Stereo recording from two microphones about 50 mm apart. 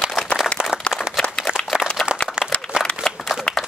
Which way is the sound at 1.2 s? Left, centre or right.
Left.